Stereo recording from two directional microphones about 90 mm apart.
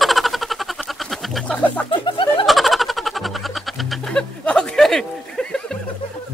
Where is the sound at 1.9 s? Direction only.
65° left (ahead or behind).